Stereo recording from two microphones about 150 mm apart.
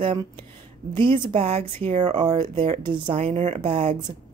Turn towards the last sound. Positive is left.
turn(degrees=-40)  # may be behind; listen again after turning